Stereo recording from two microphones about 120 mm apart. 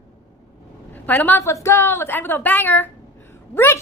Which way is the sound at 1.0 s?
15° left (ahead or behind).